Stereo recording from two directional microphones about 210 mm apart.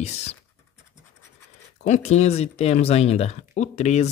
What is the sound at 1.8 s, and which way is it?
Speech, 35° left (ahead or behind).